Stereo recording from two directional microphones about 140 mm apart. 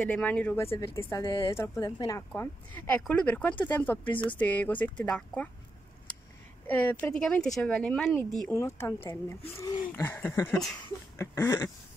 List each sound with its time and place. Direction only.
0.1 s speech: 10° left (ahead or behind)
1.2 s a woman's voice: 30° left (ahead or behind); by 5.5 s 5° left (ahead or behind)
6.7 s speech: 10° left (ahead or behind)
8.5 s speech: 20° left (ahead or behind)